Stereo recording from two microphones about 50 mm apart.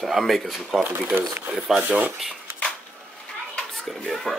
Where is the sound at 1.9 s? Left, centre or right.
Right.